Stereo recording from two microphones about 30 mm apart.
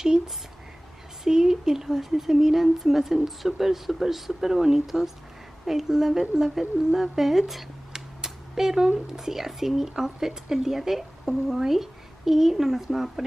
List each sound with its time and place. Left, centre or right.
1.2 s speech: centre
7.9 s a sound: centre
9.1 s speech: centre